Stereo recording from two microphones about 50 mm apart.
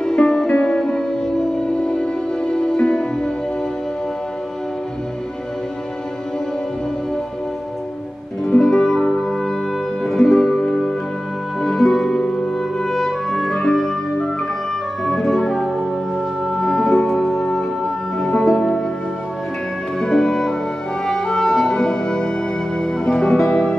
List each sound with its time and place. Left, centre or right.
0.0 s music: centre
8.5 s music: centre
11.6 s music: centre
17.4 s music: centre
20.0 s music: centre